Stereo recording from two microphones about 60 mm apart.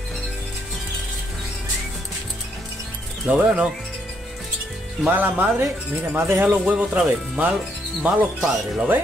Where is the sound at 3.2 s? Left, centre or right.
Right.